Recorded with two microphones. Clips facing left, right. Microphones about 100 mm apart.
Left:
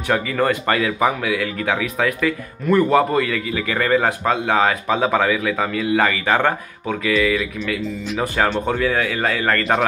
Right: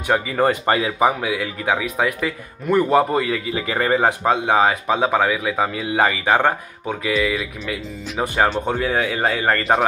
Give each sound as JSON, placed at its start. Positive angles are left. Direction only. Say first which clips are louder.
{"t": 0.1, "sound": "speech", "louder": "right 1 dB", "side_deg": -20}